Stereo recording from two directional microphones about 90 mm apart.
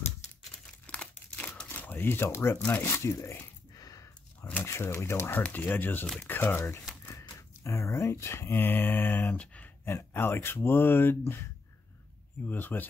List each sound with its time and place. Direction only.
0.8 s crumpling: 15° left (ahead or behind)
1.7 s speech: 20° left (ahead or behind)
3.0 s speech: 35° left (ahead or behind)
3.7 s a sound: 40° left (ahead or behind)
4.4 s a sound: 20° left (ahead or behind)
4.6 s speech: 30° left (ahead or behind); by 9.7 s 15° left (ahead or behind)
9.8 s speech: 25° left (ahead or behind)
12.4 s speech: 20° left (ahead or behind)